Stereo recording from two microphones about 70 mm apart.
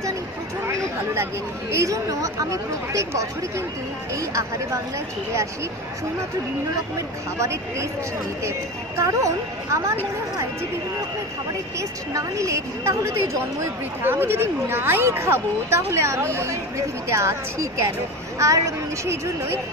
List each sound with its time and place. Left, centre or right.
0.7 s a sound: right
1.7 s a woman's voice: right
8.5 s a woman's voice: right
12.1 s a woman's voice: right
14.0 s a woman's voice: right